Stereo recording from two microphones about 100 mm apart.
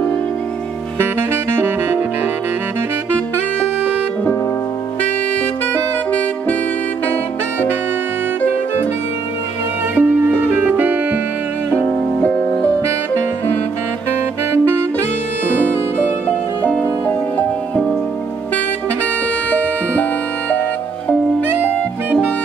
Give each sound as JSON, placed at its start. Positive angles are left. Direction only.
{"t": 0.9, "sound": "saxophone", "side_deg": -20}
{"t": 9.9, "sound": "music", "side_deg": -15}
{"t": 16.3, "sound": "music", "side_deg": 15}
{"t": 19.5, "sound": "music", "side_deg": 15}